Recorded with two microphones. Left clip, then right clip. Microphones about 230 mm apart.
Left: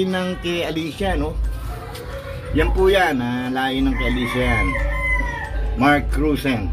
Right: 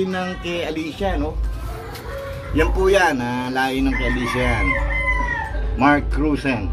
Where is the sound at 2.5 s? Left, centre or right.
Left.